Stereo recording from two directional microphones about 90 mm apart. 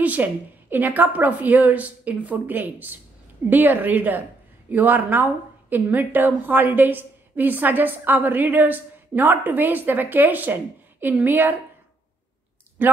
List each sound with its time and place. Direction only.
0.0 s a woman's voice: 20° right (ahead or behind)
12.8 s a woman's voice: 25° right (ahead or behind)